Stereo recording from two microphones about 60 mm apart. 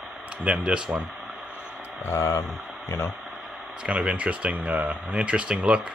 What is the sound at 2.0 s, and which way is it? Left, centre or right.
Speech, left.